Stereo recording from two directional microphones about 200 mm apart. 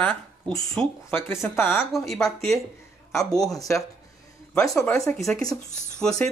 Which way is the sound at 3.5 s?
15° left (ahead or behind).